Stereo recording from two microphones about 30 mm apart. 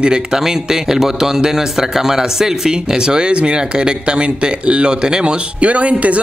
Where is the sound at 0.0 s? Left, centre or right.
Right.